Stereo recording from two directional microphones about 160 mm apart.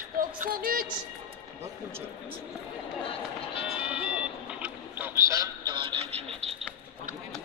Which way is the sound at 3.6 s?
5° right (ahead or behind).